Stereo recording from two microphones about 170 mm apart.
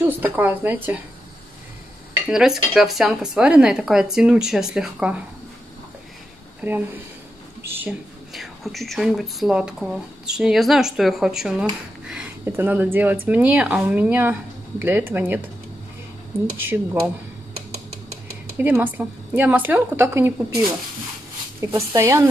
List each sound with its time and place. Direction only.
0.0 s a woman's voice: 10° right (ahead or behind)
2.2 s speech: 5° right (ahead or behind)
6.6 s a woman's voice: 10° right (ahead or behind)
8.3 s a woman's voice: centre (ahead or behind)
16.5 s a woman's voice: 15° right (ahead or behind)
18.6 s a woman's voice: 10° right (ahead or behind)